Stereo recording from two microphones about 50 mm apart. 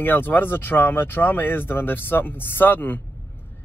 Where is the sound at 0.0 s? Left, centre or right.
Left.